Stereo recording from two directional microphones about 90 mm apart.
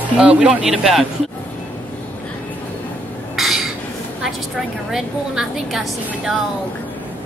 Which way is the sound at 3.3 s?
5° right (ahead or behind).